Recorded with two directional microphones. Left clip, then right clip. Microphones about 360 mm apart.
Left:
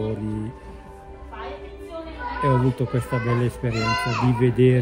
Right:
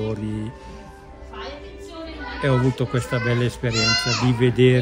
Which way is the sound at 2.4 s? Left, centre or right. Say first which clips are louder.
Right 1 dB; centre.